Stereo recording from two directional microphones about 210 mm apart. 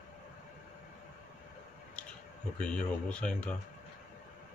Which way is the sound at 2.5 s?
5° left (ahead or behind).